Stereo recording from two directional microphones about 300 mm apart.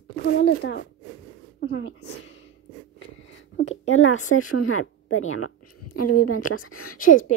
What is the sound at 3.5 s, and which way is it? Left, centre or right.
Speech, left.